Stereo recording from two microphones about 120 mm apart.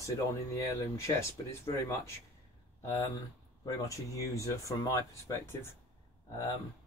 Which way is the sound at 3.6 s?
25° left (ahead or behind).